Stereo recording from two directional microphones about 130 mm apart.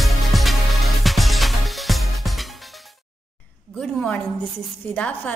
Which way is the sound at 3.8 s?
10° left (ahead or behind).